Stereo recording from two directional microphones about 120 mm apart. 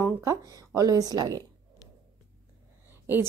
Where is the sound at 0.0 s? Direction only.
25° right (ahead or behind).